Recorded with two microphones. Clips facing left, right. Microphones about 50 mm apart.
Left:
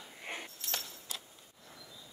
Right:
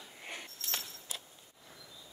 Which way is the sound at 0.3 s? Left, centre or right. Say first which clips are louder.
Left 3 dB; left.